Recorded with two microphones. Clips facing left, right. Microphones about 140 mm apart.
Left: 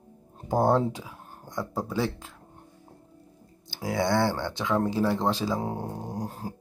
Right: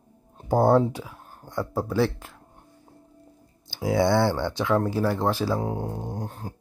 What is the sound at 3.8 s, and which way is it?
Speech, 15° right (ahead or behind).